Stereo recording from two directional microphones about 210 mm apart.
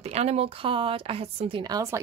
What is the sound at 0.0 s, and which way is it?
A woman's voice, 30° right (ahead or behind).